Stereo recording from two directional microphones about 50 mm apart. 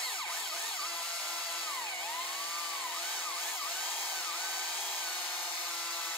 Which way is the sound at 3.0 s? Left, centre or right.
Left.